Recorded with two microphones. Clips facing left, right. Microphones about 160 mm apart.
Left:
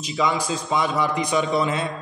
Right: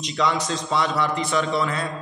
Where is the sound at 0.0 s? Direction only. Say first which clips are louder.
Even; 5° left (ahead or behind).